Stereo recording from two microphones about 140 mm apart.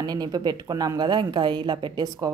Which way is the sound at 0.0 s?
30° right (ahead or behind).